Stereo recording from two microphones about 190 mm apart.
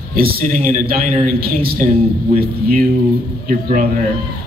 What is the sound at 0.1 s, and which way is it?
A man's voice, 50° right (ahead or behind).